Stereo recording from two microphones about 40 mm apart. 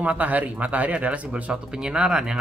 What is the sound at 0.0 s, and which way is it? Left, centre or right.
Speech, right.